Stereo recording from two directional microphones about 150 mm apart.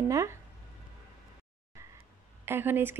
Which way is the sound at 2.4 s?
15° right (ahead or behind).